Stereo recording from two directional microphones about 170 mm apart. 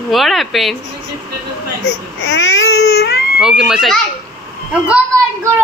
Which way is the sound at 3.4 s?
5° right (ahead or behind).